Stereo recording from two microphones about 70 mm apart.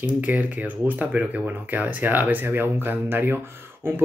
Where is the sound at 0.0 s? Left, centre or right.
Right.